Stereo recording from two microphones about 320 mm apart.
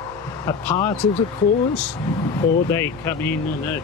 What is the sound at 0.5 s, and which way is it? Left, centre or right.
Speech, centre.